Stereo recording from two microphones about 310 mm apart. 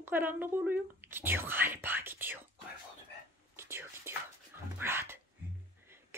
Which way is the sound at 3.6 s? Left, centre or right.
Centre.